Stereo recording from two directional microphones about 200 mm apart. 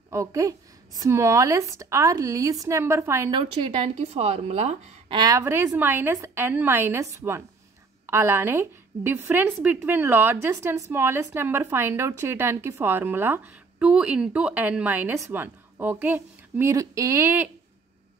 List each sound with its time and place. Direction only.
0.1 s a woman's voice: 15° right (ahead or behind); by 4.9 s 35° right (ahead or behind)
5.1 s a woman's voice: 15° right (ahead or behind)